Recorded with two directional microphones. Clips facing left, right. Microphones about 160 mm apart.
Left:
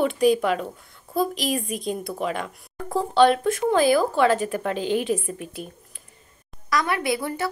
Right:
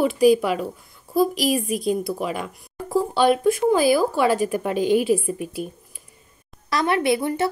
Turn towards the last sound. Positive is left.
turn(degrees=-25)  # may be behind; listen again after turning